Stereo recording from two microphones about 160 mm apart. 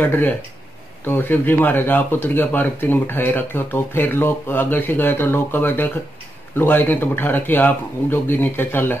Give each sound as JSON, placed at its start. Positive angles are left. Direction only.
{"t": 0.0, "sound": "speech", "side_deg": 10}